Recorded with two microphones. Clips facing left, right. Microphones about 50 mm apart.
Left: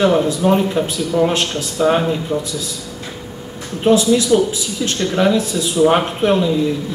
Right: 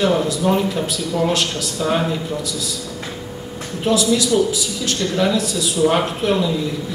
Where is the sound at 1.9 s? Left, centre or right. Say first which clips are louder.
Left 3 dB; centre.